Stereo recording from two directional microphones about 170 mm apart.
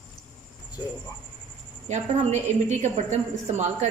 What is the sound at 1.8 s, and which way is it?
A woman's voice, 45° right (ahead or behind).